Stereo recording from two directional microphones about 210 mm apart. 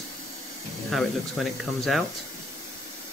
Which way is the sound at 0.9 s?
Centre (ahead or behind).